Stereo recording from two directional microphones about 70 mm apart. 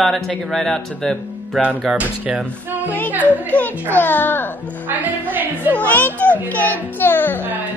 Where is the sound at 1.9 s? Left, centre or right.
Centre.